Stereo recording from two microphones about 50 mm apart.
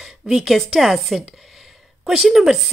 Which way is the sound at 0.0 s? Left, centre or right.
Centre.